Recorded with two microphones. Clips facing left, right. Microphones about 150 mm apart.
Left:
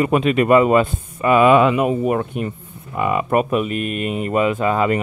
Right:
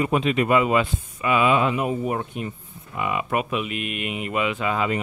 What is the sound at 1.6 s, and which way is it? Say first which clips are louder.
Speech: left 7 dB; 75° left (ahead or behind).